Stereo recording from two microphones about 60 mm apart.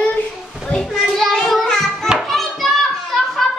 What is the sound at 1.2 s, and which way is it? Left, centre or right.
Child singing, centre.